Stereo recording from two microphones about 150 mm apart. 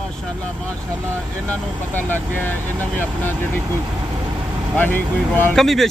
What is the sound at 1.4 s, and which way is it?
Speech, 10° left (ahead or behind).